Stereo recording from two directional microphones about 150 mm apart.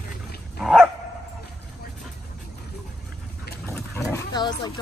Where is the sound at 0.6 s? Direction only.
Centre (ahead or behind).